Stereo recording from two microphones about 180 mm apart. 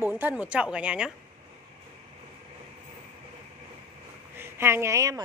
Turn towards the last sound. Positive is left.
turn(degrees=-20)  # may be behind; listen again after turning